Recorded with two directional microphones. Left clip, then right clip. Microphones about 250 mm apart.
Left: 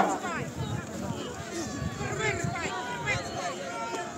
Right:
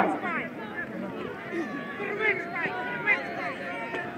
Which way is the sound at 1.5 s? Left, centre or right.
Left.